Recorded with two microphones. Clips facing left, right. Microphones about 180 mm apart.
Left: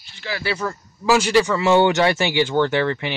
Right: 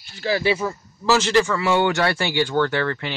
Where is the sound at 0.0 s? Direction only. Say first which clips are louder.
Right 7 dB; 40° right (ahead or behind).